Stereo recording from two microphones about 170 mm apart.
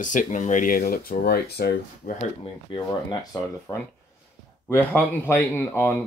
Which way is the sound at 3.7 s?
20° left (ahead or behind).